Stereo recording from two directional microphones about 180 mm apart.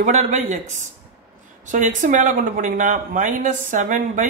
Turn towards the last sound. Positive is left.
turn(degrees=-45)  # may be behind; listen again after turning